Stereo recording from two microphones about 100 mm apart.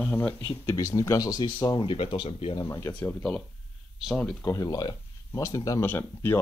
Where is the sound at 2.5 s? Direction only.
40° left (ahead or behind).